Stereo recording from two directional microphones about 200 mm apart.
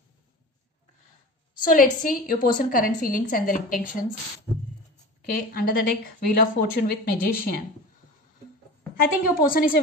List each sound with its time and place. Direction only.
1.6 s a woman's voice: 45° left (ahead or behind)
5.5 s a woman's voice: 50° left (ahead or behind)
8.9 s a woman's voice: 45° left (ahead or behind)